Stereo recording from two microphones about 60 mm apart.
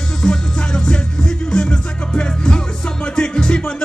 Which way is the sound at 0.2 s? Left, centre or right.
Centre.